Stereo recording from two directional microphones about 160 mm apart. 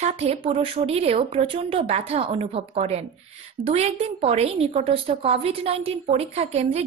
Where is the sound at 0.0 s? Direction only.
40° right (ahead or behind).